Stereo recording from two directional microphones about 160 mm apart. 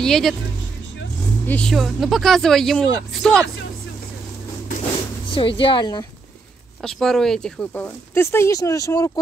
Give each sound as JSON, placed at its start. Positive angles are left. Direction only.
{"t": 0.0, "sound": "speech", "side_deg": 0}
{"t": 1.5, "sound": "speech", "side_deg": 5}
{"t": 5.3, "sound": "speech", "side_deg": 35}
{"t": 6.8, "sound": "speech", "side_deg": 0}